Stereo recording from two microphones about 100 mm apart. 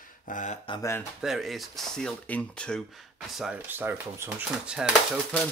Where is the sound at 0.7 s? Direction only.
60° left (ahead or behind).